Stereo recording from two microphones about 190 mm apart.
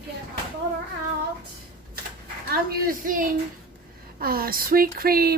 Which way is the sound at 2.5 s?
50° right (ahead or behind).